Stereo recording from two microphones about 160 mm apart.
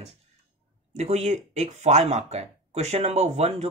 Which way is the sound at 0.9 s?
45° right (ahead or behind).